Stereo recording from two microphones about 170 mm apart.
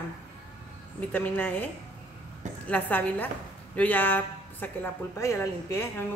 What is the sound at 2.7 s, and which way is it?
A woman's voice, 10° left (ahead or behind).